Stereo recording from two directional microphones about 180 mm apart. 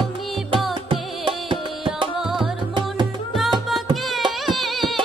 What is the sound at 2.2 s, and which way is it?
Music, centre (ahead or behind).